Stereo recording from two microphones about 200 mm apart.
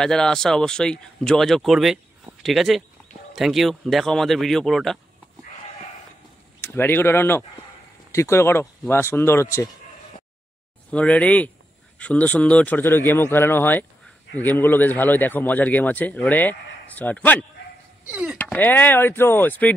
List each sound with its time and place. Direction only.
0.0 s speech: 5° left (ahead or behind)
6.6 s a man's voice: 10° left (ahead or behind)
10.9 s a man's voice: 5° left (ahead or behind)
18.0 s speech: 5° right (ahead or behind)
18.4 s a man's voice: 10° left (ahead or behind)